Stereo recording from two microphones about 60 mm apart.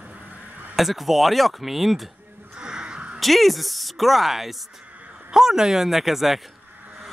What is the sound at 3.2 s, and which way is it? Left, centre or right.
Speech, centre.